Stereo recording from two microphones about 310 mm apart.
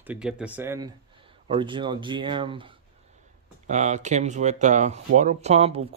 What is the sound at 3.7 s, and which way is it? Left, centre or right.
Speech, right.